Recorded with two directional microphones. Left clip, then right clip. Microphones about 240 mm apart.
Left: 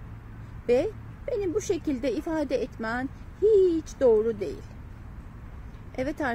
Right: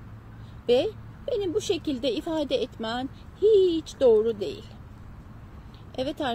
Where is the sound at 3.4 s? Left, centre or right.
Centre.